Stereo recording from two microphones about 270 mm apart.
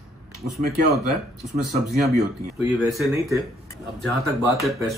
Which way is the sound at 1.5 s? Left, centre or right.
Right.